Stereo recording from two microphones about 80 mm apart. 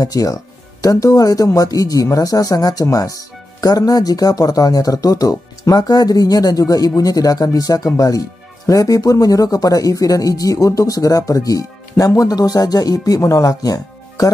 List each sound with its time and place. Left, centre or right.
0.0 s speech: left